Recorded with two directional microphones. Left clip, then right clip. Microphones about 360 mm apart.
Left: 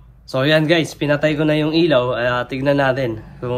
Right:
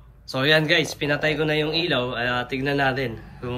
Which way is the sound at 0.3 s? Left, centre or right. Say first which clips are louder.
Left 4 dB; centre.